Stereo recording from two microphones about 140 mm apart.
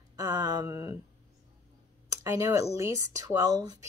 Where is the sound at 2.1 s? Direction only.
20° right (ahead or behind).